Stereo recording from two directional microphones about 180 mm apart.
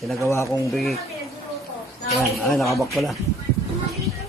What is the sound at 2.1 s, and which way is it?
Speech, centre (ahead or behind).